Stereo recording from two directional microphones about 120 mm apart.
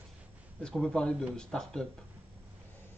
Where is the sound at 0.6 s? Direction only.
5° left (ahead or behind).